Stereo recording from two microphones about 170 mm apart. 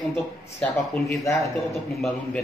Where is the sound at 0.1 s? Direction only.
5° left (ahead or behind).